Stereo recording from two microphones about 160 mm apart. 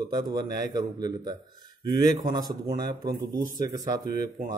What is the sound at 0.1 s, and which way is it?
Speech, 25° right (ahead or behind).